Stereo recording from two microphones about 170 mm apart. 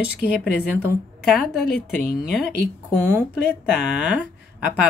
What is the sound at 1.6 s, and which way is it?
Speech, 65° left (ahead or behind).